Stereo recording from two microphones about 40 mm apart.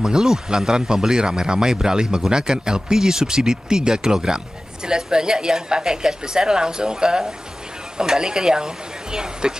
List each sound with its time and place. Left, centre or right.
0.0 s a woman's voice: centre